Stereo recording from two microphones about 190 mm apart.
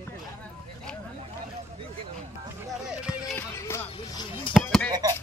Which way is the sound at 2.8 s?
5° right (ahead or behind).